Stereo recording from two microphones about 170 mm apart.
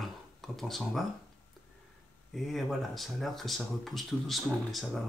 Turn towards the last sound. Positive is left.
turn(degrees=0)  # may be behind; listen again after turning